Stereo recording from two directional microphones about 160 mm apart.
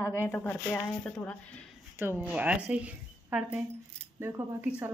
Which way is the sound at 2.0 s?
10° right (ahead or behind).